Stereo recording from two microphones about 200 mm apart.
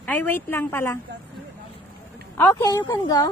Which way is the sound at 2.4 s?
10° left (ahead or behind).